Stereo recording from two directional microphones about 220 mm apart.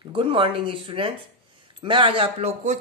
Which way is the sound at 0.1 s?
25° right (ahead or behind).